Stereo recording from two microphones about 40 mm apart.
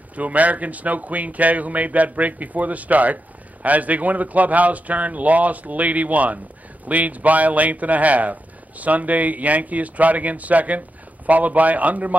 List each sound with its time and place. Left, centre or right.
0.1 s speech: right